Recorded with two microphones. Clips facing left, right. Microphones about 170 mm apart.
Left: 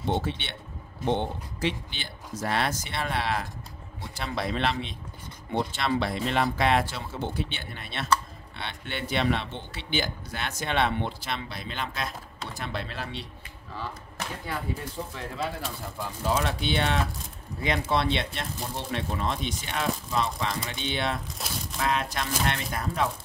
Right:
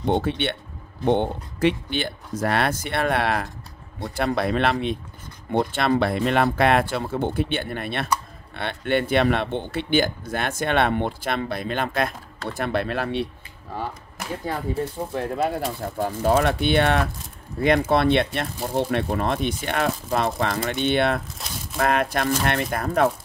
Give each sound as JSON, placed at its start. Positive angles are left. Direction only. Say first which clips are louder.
{"t": 0.2, "sound": "speech", "louder": "right 9 dB", "side_deg": -60}
{"t": 4.0, "sound": "speech", "louder": "right 9 dB", "side_deg": -50}
{"t": 15.1, "sound": "speech", "louder": "right 11 dB", "side_deg": -55}
{"t": 21.4, "sound": "crumpling", "louder": "even", "side_deg": 0}
{"t": 21.7, "sound": "speech", "louder": "right 7 dB", "side_deg": -55}